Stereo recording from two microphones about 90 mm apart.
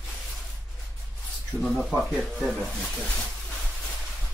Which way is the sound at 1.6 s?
Centre (ahead or behind).